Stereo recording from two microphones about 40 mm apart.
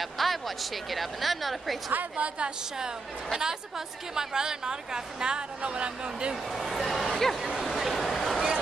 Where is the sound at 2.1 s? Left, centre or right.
Right.